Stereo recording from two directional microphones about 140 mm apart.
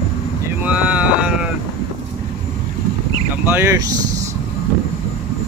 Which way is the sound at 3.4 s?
15° right (ahead or behind).